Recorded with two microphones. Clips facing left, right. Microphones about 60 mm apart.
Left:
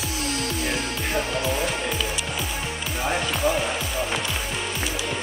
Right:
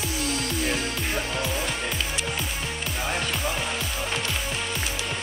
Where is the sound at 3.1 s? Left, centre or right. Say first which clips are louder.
Left 6 dB; centre.